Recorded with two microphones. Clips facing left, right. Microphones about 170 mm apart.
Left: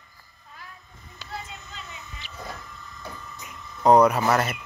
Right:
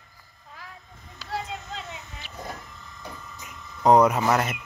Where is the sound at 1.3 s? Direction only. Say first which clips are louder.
Right 6 dB; 85° right.